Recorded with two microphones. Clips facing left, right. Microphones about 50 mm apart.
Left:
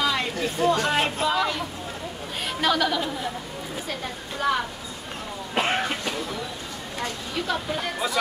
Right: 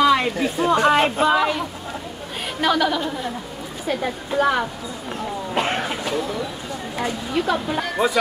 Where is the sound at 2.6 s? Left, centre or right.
Centre.